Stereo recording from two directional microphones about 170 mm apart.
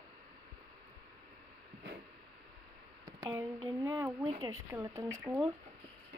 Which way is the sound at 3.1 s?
20° right (ahead or behind).